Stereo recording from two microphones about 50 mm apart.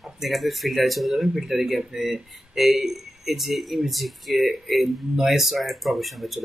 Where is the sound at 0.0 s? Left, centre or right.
Centre.